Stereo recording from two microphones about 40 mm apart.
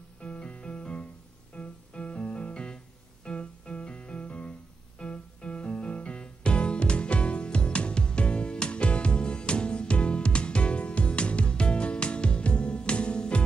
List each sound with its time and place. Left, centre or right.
0.2 s music: left